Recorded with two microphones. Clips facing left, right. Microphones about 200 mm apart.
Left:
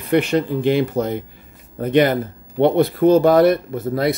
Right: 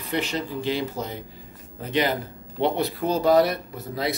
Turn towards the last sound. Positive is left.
turn(degrees=50)  # may be behind; listen again after turning